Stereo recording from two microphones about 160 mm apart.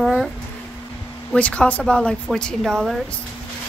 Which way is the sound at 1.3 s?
5° left (ahead or behind).